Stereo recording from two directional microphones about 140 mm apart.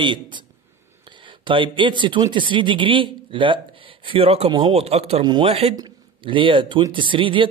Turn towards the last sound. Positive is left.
turn(degrees=-35)  # may be behind; listen again after turning